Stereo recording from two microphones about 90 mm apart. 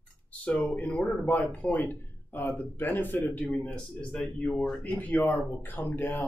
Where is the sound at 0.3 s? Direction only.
15° left (ahead or behind).